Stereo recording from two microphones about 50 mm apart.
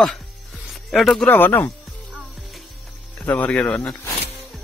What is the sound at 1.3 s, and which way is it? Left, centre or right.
Speech, left.